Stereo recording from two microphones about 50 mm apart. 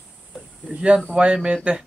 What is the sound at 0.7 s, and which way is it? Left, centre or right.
Speech, centre.